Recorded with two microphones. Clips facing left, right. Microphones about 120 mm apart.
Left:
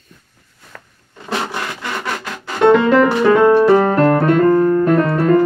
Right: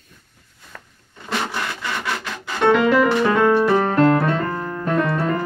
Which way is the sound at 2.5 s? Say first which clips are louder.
Left 5 dB; 20° left (ahead or behind).